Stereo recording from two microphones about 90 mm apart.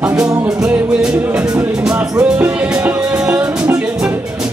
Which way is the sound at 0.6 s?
10° right (ahead or behind).